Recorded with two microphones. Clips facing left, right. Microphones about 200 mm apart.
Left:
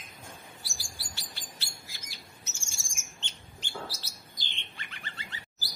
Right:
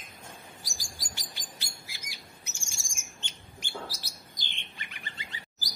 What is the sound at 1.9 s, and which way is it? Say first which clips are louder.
Squawk: right 1 dB; 10° right (ahead or behind).